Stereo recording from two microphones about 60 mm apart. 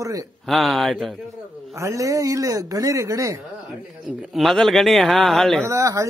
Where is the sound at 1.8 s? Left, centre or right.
Right.